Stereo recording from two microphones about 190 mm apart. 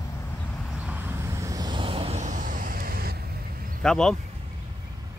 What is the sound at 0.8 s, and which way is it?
Vehicle, 10° right (ahead or behind).